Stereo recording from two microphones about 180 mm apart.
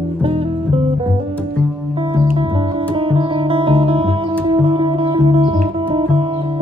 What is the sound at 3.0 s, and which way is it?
Music, 30° right (ahead or behind).